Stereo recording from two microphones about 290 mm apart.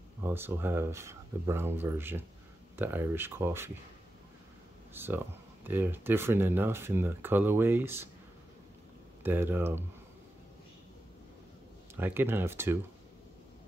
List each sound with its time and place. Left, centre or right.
0.2 s speech: centre
4.9 s speech: centre
9.2 s speech: centre
12.0 s speech: centre